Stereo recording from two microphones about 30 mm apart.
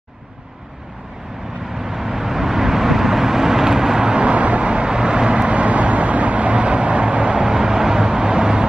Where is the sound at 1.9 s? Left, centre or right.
Centre.